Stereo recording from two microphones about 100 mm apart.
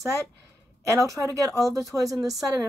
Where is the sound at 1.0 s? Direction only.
35° right (ahead or behind).